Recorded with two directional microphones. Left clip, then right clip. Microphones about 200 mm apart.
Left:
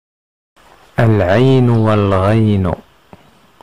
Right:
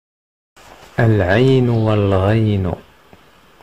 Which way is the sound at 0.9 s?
20° left (ahead or behind).